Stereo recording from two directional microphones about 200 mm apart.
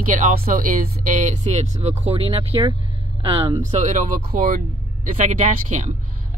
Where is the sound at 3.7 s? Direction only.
40° right (ahead or behind).